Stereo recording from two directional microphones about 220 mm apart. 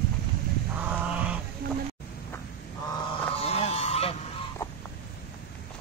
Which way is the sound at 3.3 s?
25° left (ahead or behind).